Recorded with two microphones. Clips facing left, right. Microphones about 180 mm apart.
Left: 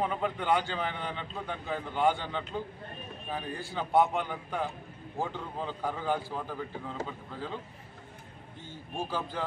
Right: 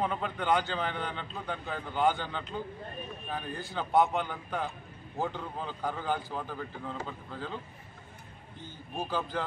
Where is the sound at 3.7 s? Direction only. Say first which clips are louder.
Even; 5° left (ahead or behind).